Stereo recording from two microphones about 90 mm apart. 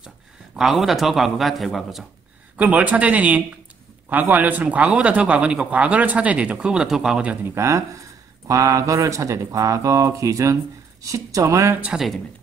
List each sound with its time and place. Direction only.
0.6 s a man's voice: 5° right (ahead or behind)
2.5 s speech: 15° right (ahead or behind)
7.4 s speech: 30° right (ahead or behind)
11.8 s speech: 10° right (ahead or behind)